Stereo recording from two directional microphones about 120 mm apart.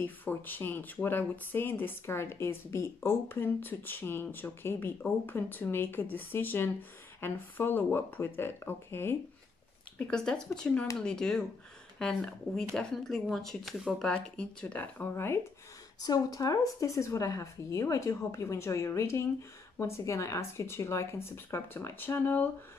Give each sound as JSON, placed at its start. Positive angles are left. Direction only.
{"t": 0.0, "sound": "a woman's voice", "side_deg": 15}
{"t": 9.9, "sound": "speech", "side_deg": 5}
{"t": 16.0, "sound": "a woman's voice", "side_deg": 30}